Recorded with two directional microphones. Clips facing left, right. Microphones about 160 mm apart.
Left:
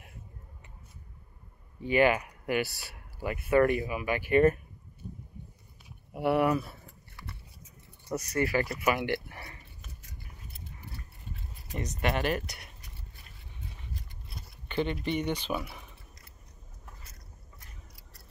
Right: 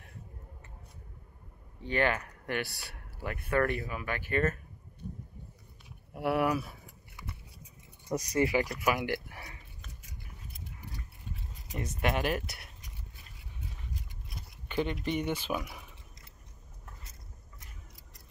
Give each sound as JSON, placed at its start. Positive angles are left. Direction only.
{"t": 1.8, "sound": "speech", "side_deg": 10}
{"t": 6.1, "sound": "speech", "side_deg": 0}
{"t": 8.1, "sound": "speech", "side_deg": -15}
{"t": 8.6, "sound": "speech", "side_deg": 0}
{"t": 11.7, "sound": "speech", "side_deg": -5}
{"t": 14.7, "sound": "speech", "side_deg": -5}